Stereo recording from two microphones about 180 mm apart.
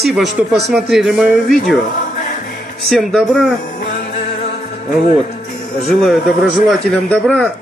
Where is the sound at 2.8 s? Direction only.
Centre (ahead or behind).